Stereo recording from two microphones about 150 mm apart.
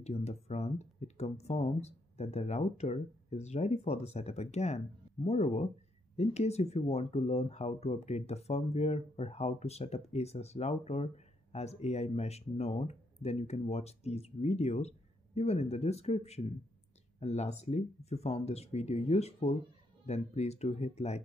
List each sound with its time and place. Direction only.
0.0 s speech: 45° left (ahead or behind)